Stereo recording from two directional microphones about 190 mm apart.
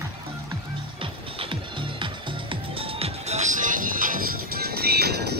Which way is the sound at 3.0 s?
35° right (ahead or behind).